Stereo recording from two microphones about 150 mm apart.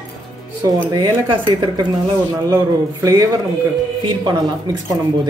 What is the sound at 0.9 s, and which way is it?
Speech, 30° right (ahead or behind).